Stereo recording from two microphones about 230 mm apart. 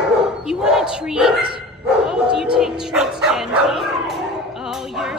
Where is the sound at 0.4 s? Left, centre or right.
Centre.